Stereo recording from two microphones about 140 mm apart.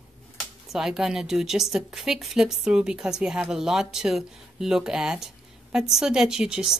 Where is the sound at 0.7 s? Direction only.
5° right (ahead or behind).